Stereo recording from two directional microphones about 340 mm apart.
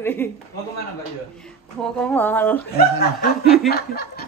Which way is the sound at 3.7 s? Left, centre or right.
Left.